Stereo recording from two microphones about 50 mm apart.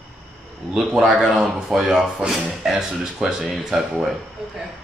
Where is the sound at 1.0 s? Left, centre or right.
Centre.